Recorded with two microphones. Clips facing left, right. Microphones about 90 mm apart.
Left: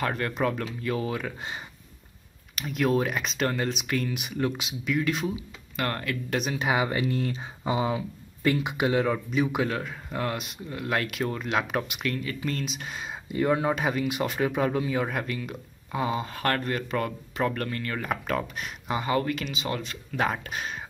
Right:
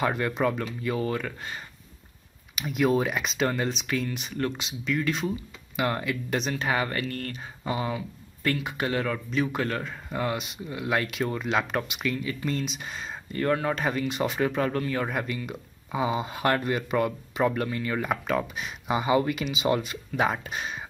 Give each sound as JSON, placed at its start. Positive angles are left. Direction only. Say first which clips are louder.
{"t": 0.0, "sound": "speech", "louder": "right 2 dB", "side_deg": -5}
{"t": 2.5, "sound": "speech", "louder": "right 1 dB", "side_deg": -5}
{"t": 5.8, "sound": "speech", "louder": "right 2 dB", "side_deg": -5}
{"t": 6.3, "sound": "speech", "louder": "left 1 dB", "side_deg": 5}